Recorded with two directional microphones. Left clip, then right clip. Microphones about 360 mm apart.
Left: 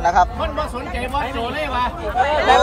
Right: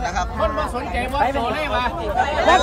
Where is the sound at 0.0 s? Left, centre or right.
Centre.